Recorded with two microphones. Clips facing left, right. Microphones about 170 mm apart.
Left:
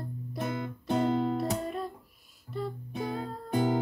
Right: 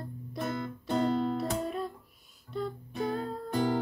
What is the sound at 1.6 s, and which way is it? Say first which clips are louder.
Music: right 1 dB; centre (ahead or behind).